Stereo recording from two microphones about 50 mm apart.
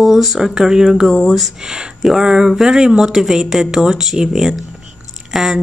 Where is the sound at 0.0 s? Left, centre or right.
Centre.